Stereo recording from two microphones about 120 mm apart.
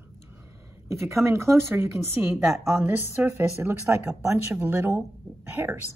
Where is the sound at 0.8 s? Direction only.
25° right (ahead or behind).